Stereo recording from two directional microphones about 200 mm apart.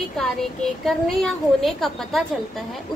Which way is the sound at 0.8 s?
Centre (ahead or behind).